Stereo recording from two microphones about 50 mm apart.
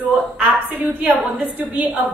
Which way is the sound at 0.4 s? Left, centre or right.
Right.